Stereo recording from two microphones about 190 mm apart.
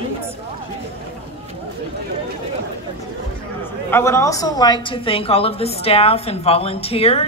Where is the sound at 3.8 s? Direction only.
15° left (ahead or behind); by 7.3 s 30° left (ahead or behind).